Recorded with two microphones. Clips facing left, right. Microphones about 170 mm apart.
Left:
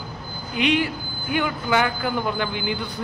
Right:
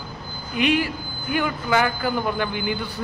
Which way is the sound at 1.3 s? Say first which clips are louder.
Even; centre (ahead or behind).